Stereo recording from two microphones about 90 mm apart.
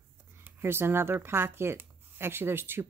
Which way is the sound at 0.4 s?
25° right (ahead or behind).